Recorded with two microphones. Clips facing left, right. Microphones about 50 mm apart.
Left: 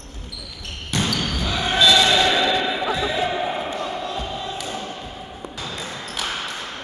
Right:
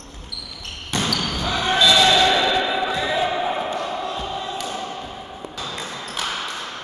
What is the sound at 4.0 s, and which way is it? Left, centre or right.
Crowd, centre.